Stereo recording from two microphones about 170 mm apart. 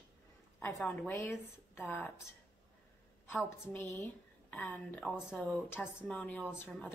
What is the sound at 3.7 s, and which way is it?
Speech, 15° left (ahead or behind).